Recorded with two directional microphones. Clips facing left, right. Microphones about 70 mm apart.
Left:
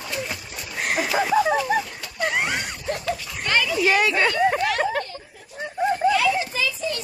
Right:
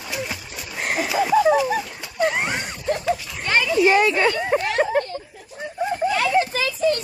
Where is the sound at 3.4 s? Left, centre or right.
Right.